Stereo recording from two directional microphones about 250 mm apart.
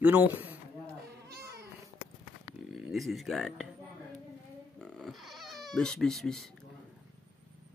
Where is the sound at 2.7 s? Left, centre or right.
Centre.